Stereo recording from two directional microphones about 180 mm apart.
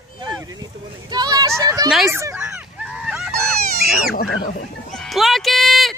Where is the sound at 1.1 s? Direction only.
20° right (ahead or behind).